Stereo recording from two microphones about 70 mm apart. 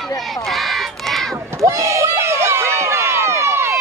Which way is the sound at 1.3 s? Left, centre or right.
Right.